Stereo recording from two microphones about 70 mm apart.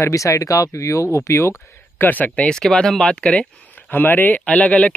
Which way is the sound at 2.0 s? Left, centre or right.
Left.